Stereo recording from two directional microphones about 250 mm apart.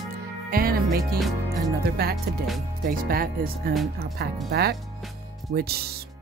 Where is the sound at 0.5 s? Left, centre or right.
Right.